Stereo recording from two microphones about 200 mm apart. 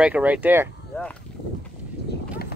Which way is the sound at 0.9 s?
10° left (ahead or behind).